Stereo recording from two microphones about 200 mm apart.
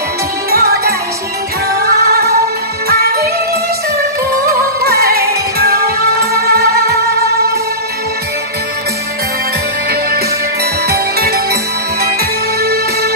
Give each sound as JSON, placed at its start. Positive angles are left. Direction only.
{"t": 0.5, "sound": "music", "side_deg": -50}
{"t": 2.0, "sound": "music", "side_deg": -50}
{"t": 4.3, "sound": "music", "side_deg": -50}
{"t": 9.8, "sound": "music", "side_deg": -50}
{"t": 12.6, "sound": "music", "side_deg": -50}